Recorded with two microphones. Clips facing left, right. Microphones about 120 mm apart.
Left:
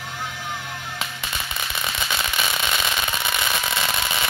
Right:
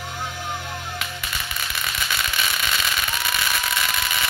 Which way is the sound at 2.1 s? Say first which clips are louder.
Left 1 dB; 25° left (ahead or behind).